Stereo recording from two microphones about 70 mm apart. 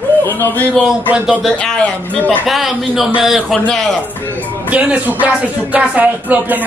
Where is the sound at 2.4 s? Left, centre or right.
Centre.